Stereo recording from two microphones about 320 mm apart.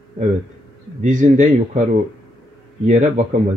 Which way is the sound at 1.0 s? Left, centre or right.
Right.